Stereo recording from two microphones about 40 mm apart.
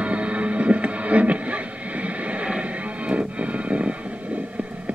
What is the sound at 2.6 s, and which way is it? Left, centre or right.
Music, right.